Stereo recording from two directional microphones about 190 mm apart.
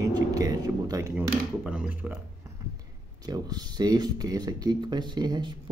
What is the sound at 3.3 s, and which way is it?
Speech, 20° right (ahead or behind).